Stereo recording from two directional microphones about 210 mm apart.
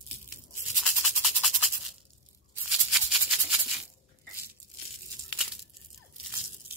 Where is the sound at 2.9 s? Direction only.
5° right (ahead or behind).